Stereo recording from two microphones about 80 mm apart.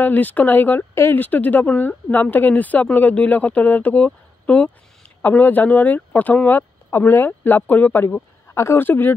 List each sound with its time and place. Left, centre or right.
0.0 s speech: left